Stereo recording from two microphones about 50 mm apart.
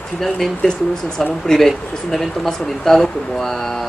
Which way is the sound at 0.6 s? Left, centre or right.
Centre.